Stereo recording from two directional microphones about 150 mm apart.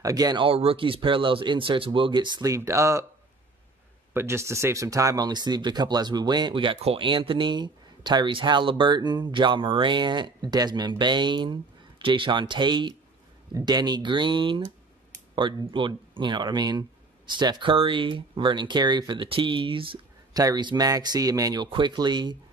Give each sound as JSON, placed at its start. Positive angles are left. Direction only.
{"t": 0.0, "sound": "speech", "side_deg": -25}
{"t": 4.1, "sound": "speech", "side_deg": -15}
{"t": 15.7, "sound": "speech", "side_deg": -30}